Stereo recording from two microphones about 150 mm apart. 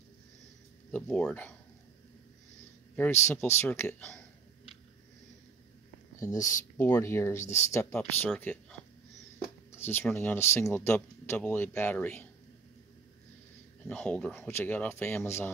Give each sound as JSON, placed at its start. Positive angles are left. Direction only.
{"t": 0.9, "sound": "speech", "side_deg": 10}
{"t": 3.0, "sound": "speech", "side_deg": 15}
{"t": 6.1, "sound": "speech", "side_deg": 20}
{"t": 7.9, "sound": "speech", "side_deg": 5}
{"t": 9.8, "sound": "a sound", "side_deg": 15}
{"t": 10.1, "sound": "speech", "side_deg": 15}
{"t": 13.8, "sound": "speech", "side_deg": 5}